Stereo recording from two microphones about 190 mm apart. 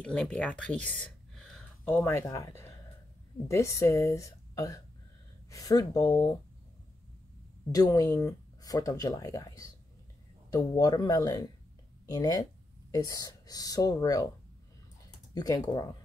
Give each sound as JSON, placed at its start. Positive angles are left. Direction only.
{"t": 0.0, "sound": "speech", "side_deg": 5}
{"t": 2.0, "sound": "speech", "side_deg": 10}
{"t": 7.7, "sound": "speech", "side_deg": 20}
{"t": 15.3, "sound": "speech", "side_deg": 20}